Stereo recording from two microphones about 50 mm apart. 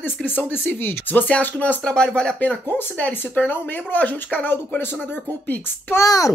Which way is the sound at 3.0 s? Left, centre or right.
Left.